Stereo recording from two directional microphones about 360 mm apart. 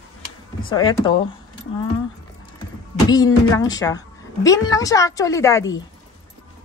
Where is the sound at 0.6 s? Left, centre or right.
Centre.